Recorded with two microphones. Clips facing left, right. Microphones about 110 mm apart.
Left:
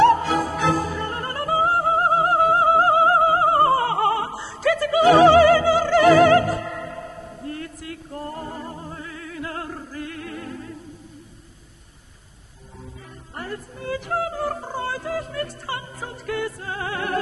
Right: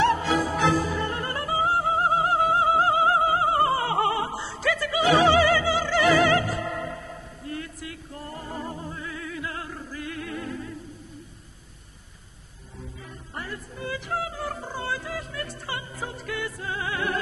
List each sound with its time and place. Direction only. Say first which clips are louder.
0.0 s music: left 5 dB; 50° left (ahead or behind)
4.3 s music: even; centre (ahead or behind)
4.6 s opera: left 7 dB; 50° left (ahead or behind)
6.6 s music: even; centre (ahead or behind)
7.0 s music: left 5 dB; 45° left (ahead or behind)
13.4 s yodeling: left 3 dB; 45° left (ahead or behind)
16.1 s music: left 8 dB; 45° left (ahead or behind)